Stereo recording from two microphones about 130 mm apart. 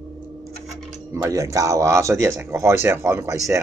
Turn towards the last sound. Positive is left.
turn(degrees=-20)  # may be behind; listen again after turning